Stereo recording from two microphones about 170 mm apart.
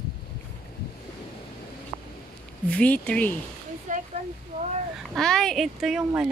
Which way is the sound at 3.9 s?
50° right (ahead or behind).